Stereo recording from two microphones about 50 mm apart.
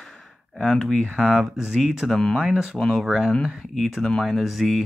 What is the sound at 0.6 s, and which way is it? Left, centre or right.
Speech, centre.